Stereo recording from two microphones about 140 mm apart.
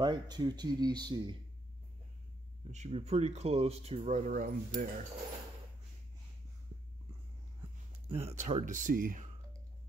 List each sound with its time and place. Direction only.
0.0 s speech: 30° right (ahead or behind)
2.7 s speech: 55° right (ahead or behind)
4.0 s speech: 65° right (ahead or behind)
8.1 s speech: 45° right (ahead or behind); by 9.3 s 75° right (ahead or behind)